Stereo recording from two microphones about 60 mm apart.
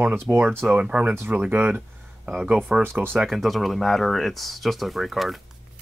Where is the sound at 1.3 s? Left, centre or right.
Right.